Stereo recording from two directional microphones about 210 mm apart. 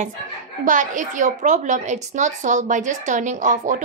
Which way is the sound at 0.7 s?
35° right (ahead or behind).